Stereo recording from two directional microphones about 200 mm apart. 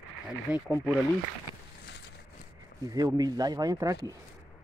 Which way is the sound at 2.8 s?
20° right (ahead or behind).